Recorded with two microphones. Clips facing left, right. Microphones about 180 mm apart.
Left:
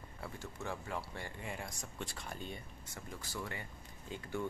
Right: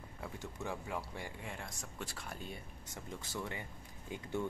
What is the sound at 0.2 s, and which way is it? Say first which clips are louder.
Speech: right 1 dB; 15° right (ahead or behind).